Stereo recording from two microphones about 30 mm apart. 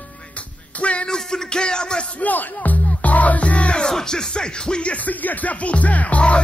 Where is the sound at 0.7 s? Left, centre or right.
Left.